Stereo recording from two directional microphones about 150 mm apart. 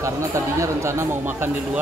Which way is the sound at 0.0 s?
20° right (ahead or behind).